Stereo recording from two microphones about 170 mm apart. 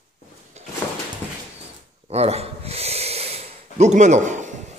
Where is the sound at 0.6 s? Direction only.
40° right (ahead or behind).